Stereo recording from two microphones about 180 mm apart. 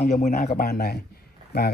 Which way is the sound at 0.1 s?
45° left (ahead or behind).